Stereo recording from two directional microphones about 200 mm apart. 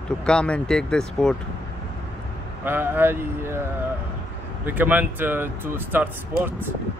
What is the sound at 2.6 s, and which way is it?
Speech, 10° right (ahead or behind).